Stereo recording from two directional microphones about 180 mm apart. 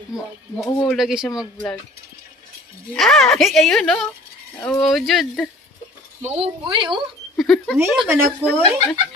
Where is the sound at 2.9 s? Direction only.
5° left (ahead or behind).